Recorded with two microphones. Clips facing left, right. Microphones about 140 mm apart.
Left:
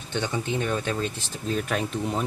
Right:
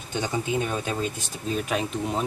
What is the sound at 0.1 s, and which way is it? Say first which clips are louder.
Speech: right 1 dB; 10° right (ahead or behind).